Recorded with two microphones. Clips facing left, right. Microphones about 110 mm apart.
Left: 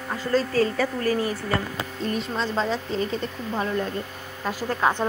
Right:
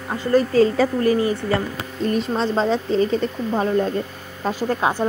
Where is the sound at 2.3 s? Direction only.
35° right (ahead or behind).